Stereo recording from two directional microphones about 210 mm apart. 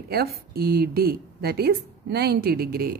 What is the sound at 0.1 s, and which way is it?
A woman's voice, 50° right (ahead or behind).